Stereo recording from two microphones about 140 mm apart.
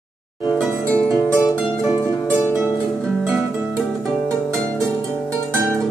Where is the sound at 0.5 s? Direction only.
5° left (ahead or behind).